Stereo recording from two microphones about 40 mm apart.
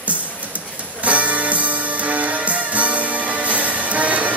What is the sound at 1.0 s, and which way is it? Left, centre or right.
Music, right.